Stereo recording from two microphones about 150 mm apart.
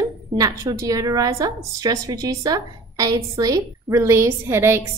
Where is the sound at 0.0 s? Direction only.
20° right (ahead or behind).